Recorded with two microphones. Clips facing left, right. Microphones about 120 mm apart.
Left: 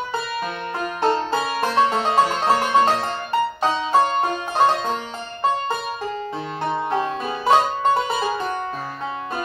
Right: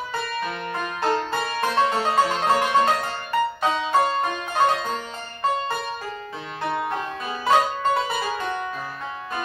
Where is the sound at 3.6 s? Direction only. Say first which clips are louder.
Left 3 dB; 30° left (ahead or behind).